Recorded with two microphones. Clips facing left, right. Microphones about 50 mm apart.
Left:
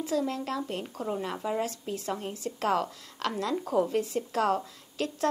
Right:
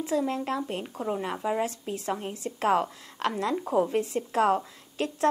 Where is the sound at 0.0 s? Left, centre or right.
Right.